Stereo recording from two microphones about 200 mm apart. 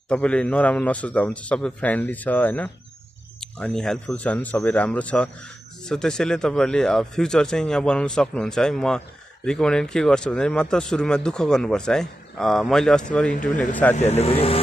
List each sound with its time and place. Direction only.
0.1 s a man's voice: 5° left (ahead or behind)
13.9 s speech: 35° left (ahead or behind)